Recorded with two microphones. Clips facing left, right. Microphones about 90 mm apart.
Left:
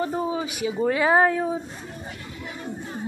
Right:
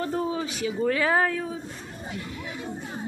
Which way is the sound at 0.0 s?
15° left (ahead or behind).